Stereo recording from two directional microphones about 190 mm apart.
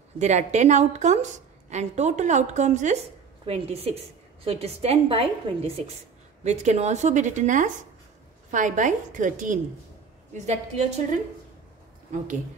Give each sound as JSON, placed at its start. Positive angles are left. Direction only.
{"t": 0.2, "sound": "a woman's voice", "side_deg": -40}